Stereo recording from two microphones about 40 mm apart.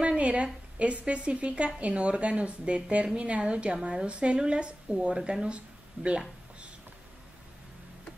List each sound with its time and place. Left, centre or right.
0.0 s a woman's voice: right